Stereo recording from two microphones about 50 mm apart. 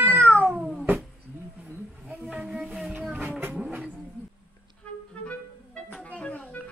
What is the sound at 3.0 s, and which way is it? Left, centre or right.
Vehicle, right.